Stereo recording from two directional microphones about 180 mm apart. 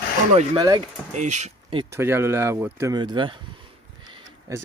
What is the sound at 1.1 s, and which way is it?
Speech, 40° right (ahead or behind).